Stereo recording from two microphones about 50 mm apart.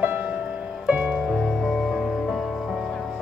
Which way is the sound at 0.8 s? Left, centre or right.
Right.